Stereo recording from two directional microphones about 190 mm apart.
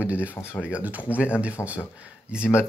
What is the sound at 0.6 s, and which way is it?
Speech, 10° right (ahead or behind).